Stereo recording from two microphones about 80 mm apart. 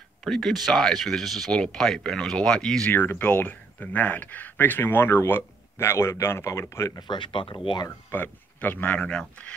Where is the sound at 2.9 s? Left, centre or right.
Left.